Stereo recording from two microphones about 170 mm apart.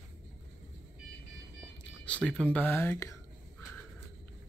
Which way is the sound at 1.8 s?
5° left (ahead or behind).